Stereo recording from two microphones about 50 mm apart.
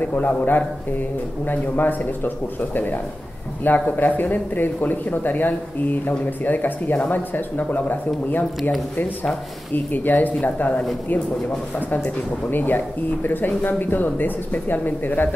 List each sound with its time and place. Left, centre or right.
0.0 s speech: left
10.0 s speech: left
12.4 s speech: left